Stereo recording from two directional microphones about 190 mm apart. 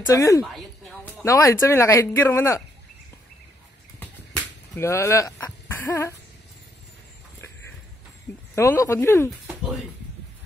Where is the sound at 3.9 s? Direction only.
10° left (ahead or behind).